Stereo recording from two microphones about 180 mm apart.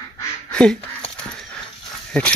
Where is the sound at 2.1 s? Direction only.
5° left (ahead or behind).